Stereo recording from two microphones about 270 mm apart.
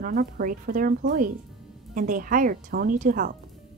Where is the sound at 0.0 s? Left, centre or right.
Right.